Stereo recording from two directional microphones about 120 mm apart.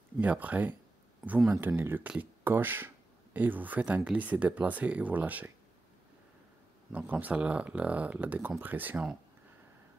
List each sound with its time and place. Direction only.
0.2 s speech: 10° right (ahead or behind)
1.2 s speech: centre (ahead or behind)
1.8 s speech: 15° right (ahead or behind)
6.9 s speech: 15° right (ahead or behind)